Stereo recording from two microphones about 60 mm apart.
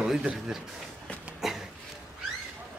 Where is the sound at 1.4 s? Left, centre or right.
Centre.